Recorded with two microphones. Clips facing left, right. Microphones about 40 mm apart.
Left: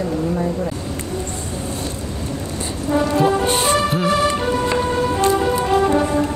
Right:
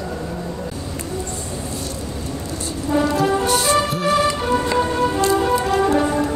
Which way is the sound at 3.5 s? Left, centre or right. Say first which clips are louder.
Even; left.